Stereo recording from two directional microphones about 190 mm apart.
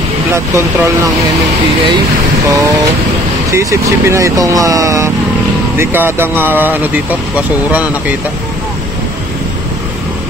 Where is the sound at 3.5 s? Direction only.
15° right (ahead or behind).